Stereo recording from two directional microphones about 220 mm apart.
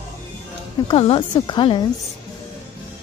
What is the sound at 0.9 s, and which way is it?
Speech, 25° left (ahead or behind).